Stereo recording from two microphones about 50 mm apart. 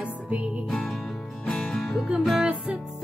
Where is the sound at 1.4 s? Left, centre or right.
Centre.